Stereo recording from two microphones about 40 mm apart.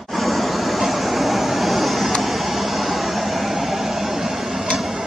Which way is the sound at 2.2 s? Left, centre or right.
Centre.